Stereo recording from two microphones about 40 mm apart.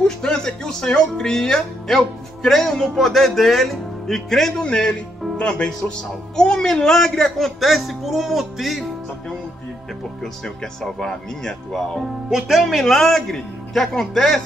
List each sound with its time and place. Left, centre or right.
0.0 s speech: centre
4.6 s speech: left; by 8.8 s centre
10.2 s speech: centre
12.3 s speech: centre